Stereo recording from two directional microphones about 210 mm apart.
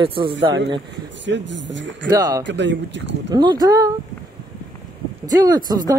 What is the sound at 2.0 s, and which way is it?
Speech, 15° right (ahead or behind).